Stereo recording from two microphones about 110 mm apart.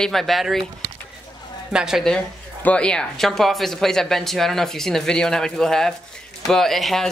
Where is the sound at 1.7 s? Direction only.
5° right (ahead or behind).